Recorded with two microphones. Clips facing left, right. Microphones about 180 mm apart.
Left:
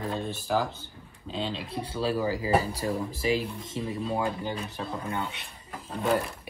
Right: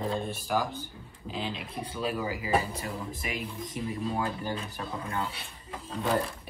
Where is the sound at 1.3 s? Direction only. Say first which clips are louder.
Left 3 dB; 30° left (ahead or behind).